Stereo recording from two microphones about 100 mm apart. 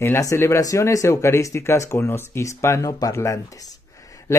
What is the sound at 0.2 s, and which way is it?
Speech, 30° left (ahead or behind).